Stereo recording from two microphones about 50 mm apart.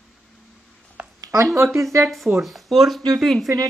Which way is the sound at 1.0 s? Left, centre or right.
Right.